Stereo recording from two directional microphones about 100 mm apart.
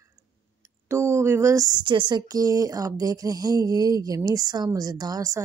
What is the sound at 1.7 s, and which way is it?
Speech, 55° right (ahead or behind).